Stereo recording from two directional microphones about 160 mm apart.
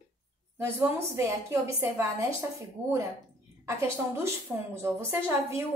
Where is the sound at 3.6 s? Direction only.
15° right (ahead or behind).